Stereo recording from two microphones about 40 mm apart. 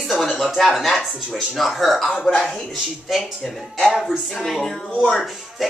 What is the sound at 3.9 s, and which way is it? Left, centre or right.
Speech, centre.